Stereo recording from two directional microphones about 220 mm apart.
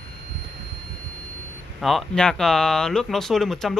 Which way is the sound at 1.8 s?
Centre (ahead or behind).